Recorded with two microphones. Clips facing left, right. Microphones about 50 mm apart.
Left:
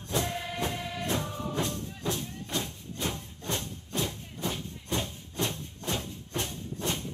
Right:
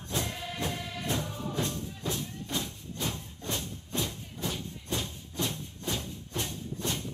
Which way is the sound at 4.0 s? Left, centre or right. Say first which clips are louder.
Left 3 dB; centre.